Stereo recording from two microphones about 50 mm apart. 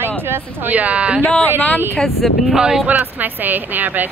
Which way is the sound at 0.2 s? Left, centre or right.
Right.